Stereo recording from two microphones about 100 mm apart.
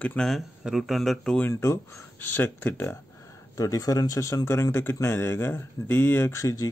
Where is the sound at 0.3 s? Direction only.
5° right (ahead or behind).